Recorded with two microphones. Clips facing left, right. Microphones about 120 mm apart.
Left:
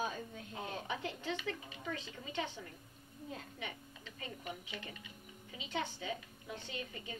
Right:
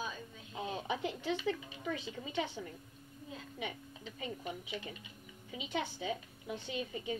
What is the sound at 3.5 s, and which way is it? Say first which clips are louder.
A woman's voice: right 4 dB; 15° right (ahead or behind).